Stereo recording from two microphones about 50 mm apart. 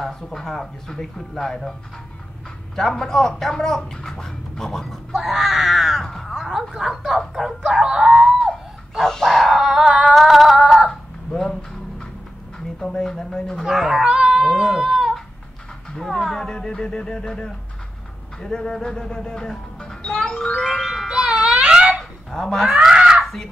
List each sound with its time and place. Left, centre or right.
0.0 s speech: centre
5.1 s a sound: centre
6.3 s music: centre
8.3 s dog: centre
10.9 s fowl: centre
12.5 s speech: centre
13.7 s speech: centre
14.4 s speech: centre
16.0 s speech: centre
20.8 s music: centre
21.1 s babbling: centre
22.3 s speech: centre
22.8 s a sound: centre
23.2 s crow: centre